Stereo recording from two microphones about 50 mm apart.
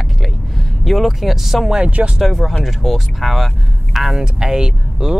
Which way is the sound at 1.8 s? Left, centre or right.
Right.